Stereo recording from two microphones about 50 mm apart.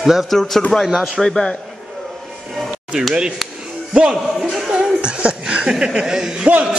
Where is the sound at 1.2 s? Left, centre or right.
Centre.